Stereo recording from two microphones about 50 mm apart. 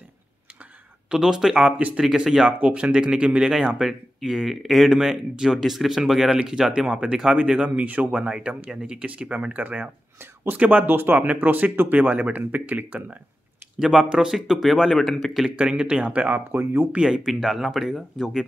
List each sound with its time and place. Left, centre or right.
1.1 s speech: centre
1.7 s speech: right
2.0 s speech: centre
4.9 s speech: centre; by 8.1 s right
8.1 s speech: centre
9.0 s speech: right
10.9 s speech: right
12.0 s speech: right
13.7 s speech: centre
15.5 s speech: right
16.3 s speech: right
16.9 s speech: centre
17.3 s speech: centre